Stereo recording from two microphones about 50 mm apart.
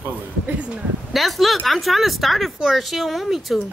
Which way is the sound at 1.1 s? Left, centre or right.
Centre.